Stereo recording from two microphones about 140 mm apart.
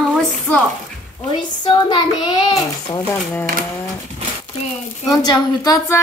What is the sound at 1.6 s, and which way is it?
A woman's voice, 30° left (ahead or behind).